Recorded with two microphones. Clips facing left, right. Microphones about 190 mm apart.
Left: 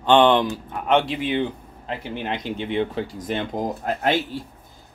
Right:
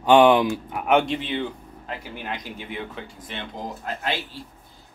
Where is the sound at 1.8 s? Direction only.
25° left (ahead or behind); by 3.6 s 45° left (ahead or behind).